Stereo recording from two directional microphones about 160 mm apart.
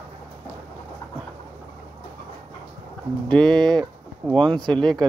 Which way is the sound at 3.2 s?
5° left (ahead or behind).